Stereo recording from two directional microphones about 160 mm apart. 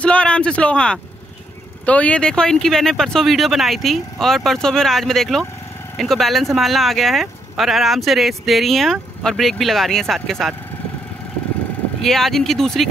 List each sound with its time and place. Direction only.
0.0 s a man's voice: 5° left (ahead or behind)
12.0 s speech: centre (ahead or behind)